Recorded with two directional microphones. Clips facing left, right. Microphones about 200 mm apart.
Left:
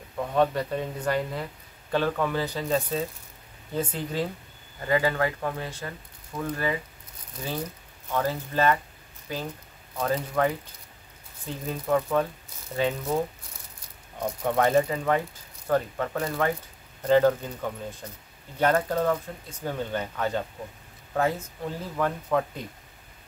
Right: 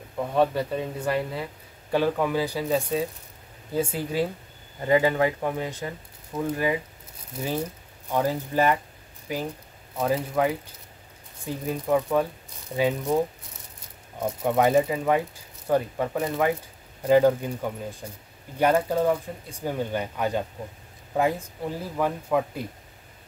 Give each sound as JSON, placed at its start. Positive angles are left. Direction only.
{"t": 0.2, "sound": "speech", "side_deg": -5}
{"t": 4.7, "sound": "speech", "side_deg": -20}
{"t": 8.1, "sound": "speech", "side_deg": -15}
{"t": 14.2, "sound": "speech", "side_deg": -5}